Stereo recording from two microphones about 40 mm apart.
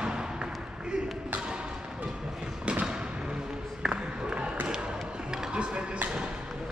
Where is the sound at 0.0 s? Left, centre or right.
Right.